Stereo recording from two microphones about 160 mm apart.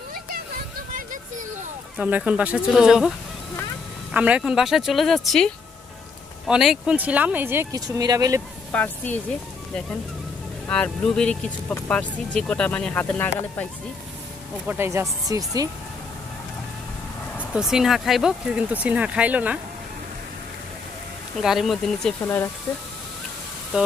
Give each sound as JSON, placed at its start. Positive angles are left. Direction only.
{"t": 2.0, "sound": "speech", "side_deg": -10}
{"t": 4.1, "sound": "speech", "side_deg": -10}
{"t": 7.8, "sound": "speech", "side_deg": -25}
{"t": 8.7, "sound": "speech", "side_deg": 10}
{"t": 10.7, "sound": "speech", "side_deg": 5}
{"t": 14.7, "sound": "speech", "side_deg": -15}
{"t": 17.6, "sound": "speech", "side_deg": 0}
{"t": 21.4, "sound": "speech", "side_deg": 0}
{"t": 22.2, "sound": "speech", "side_deg": 15}